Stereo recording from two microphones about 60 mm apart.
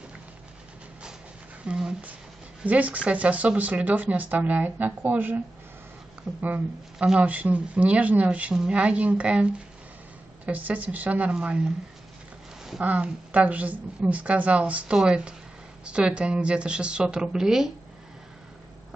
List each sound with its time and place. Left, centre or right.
1.6 s speech: centre
2.6 s speech: right
7.0 s speech: right
12.8 s speech: right; by 17.7 s centre